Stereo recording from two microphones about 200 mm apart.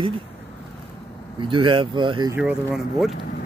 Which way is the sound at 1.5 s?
25° right (ahead or behind).